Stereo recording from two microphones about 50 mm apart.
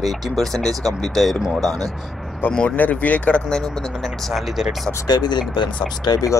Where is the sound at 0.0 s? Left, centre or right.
Centre.